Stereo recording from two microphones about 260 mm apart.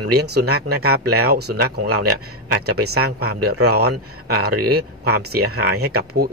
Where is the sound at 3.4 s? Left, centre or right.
Right.